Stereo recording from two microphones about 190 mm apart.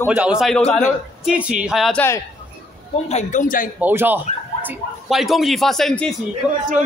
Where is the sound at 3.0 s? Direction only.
40° left (ahead or behind).